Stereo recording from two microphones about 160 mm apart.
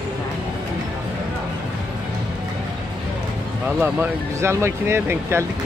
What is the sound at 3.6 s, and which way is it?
Speech, 10° right (ahead or behind).